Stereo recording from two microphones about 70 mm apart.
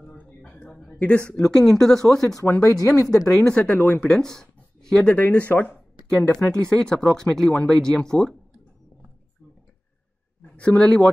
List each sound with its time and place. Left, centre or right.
0.0 s a sound: centre
0.9 s speech: centre
2.8 s speech: left
3.3 s speech: centre
4.1 s speech: centre
6.0 s speech: centre
10.5 s speech: centre